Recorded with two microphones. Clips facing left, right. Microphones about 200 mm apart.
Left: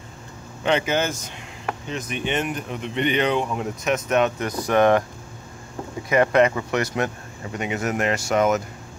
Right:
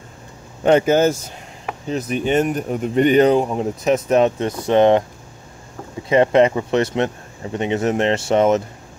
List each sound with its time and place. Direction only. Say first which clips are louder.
0.7 s speech: right 8 dB; 45° right (ahead or behind); by 5.0 s 25° right (ahead or behind)
6.0 s speech: right 4 dB; 25° right (ahead or behind)